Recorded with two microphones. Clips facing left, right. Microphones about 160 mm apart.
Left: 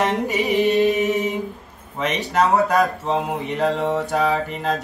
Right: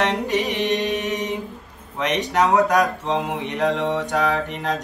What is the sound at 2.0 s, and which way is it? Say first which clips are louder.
Speech: even; 5° left (ahead or behind).